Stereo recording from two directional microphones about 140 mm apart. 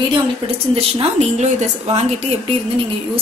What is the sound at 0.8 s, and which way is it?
Speech, 45° right (ahead or behind).